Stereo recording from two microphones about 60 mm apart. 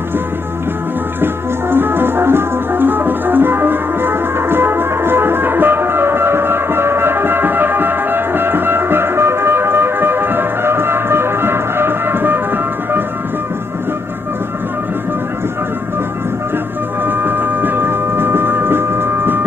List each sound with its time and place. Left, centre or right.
1.2 s music: right
17.0 s hum: right